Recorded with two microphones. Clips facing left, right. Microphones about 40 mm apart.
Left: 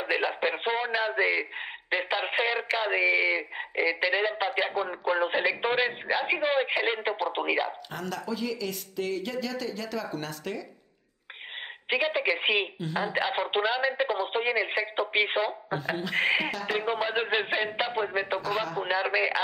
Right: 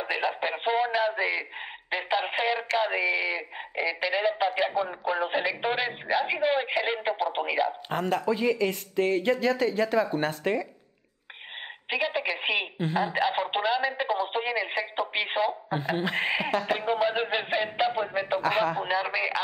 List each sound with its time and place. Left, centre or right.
0.0 s speech: centre
7.9 s speech: right
11.9 s a woman's voice: centre
16.4 s speech: right
16.7 s speech: centre